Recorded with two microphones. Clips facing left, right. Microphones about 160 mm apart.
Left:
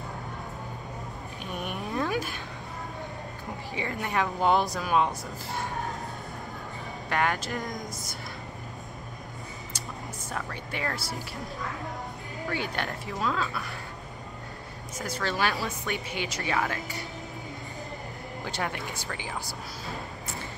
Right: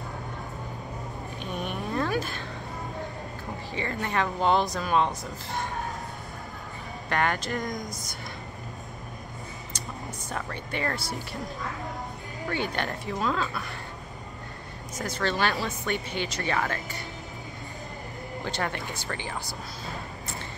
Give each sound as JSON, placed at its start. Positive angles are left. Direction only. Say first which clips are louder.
{"t": 1.4, "sound": "a sound", "louder": "right 1 dB", "side_deg": 5}
{"t": 3.7, "sound": "speech", "louder": "right 1 dB", "side_deg": 10}
{"t": 7.1, "sound": "speech", "louder": "right 1 dB", "side_deg": 5}
{"t": 10.3, "sound": "speech", "louder": "right 2 dB", "side_deg": 5}
{"t": 12.4, "sound": "speech", "louder": "right 2 dB", "side_deg": 5}
{"t": 15.0, "sound": "speech", "louder": "right 2 dB", "side_deg": 5}
{"t": 18.4, "sound": "speech", "louder": "right 1 dB", "side_deg": 5}